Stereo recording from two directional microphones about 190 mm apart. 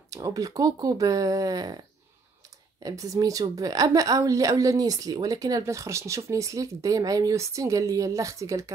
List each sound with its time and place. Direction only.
0.1 s a woman's voice: 15° right (ahead or behind)
2.8 s a woman's voice: 20° right (ahead or behind)